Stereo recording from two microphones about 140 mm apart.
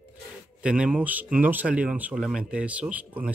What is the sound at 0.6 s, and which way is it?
Speech, 5° right (ahead or behind).